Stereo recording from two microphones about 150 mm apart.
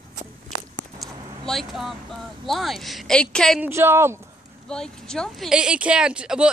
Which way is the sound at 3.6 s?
15° right (ahead or behind).